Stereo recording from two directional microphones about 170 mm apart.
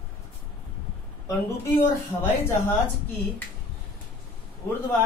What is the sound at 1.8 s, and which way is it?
Speech, 15° left (ahead or behind).